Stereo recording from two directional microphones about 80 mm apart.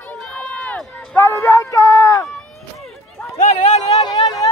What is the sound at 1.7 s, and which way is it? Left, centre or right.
Speech, left.